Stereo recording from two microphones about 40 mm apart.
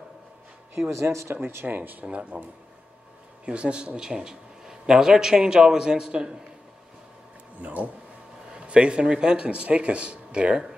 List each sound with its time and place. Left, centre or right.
0.8 s speech: right
1.8 s speech: right
3.4 s a man's voice: right
7.5 s speech: right
8.5 s a man's voice: right
10.5 s speech: centre